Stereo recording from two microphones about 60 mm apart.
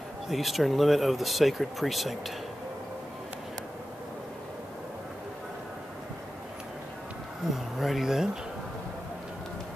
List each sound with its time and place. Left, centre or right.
0.3 s speech: centre
7.5 s speech: centre